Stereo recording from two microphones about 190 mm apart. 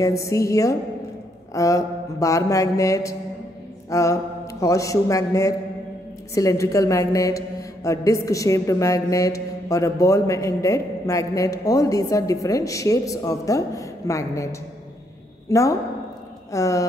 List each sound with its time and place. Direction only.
0.0 s a woman's voice: 15° left (ahead or behind)